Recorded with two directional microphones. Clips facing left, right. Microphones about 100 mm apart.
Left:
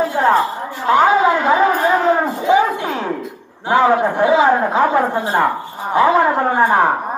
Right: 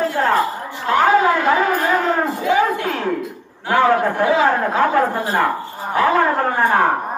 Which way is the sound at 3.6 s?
20° left (ahead or behind).